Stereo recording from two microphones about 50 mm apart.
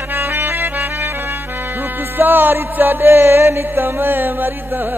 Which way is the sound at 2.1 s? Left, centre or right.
Right.